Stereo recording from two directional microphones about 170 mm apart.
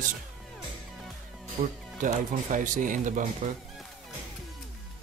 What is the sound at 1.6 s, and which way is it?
Speech, 45° right (ahead or behind).